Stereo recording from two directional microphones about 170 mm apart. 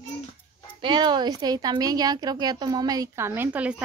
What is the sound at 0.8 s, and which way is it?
A woman's voice, 25° right (ahead or behind).